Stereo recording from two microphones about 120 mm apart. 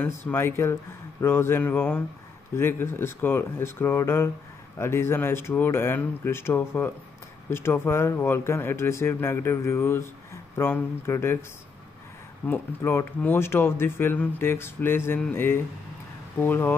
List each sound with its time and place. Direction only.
0.0 s speech: 20° left (ahead or behind)
12.4 s speech: 15° left (ahead or behind)